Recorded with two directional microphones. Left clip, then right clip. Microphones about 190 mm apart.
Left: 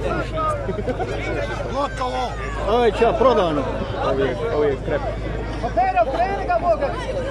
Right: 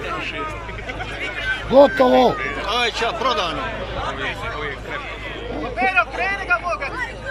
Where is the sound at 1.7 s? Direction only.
55° right (ahead or behind).